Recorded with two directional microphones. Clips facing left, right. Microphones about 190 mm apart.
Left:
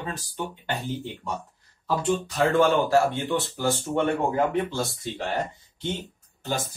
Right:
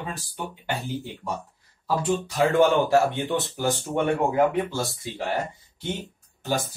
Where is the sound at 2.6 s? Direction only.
20° right (ahead or behind).